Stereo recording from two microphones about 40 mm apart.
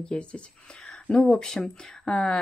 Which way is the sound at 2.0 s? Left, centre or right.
Left.